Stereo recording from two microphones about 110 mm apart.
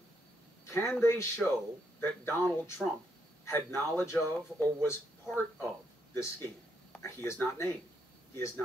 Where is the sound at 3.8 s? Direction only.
25° left (ahead or behind).